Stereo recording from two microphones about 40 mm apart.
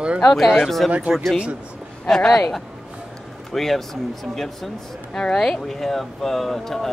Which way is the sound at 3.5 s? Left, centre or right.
Centre.